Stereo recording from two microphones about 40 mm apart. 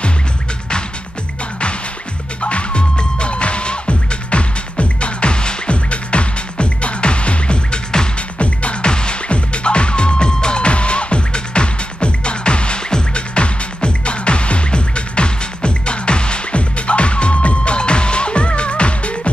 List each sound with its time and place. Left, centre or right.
2.4 s music: left